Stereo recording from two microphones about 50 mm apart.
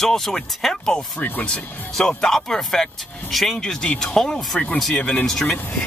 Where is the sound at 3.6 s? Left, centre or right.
Centre.